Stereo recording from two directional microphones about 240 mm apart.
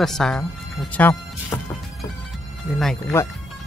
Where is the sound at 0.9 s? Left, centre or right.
Centre.